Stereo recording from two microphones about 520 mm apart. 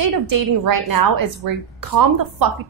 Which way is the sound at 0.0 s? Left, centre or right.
Right.